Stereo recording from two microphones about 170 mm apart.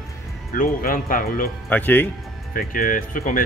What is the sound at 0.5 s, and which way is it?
Speech, 55° left (ahead or behind).